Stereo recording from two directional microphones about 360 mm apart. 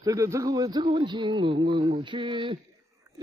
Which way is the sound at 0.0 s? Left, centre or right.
Centre.